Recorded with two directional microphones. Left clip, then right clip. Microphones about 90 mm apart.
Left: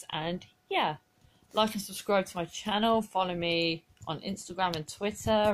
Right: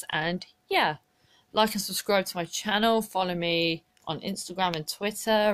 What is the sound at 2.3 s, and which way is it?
Speech, 30° right (ahead or behind).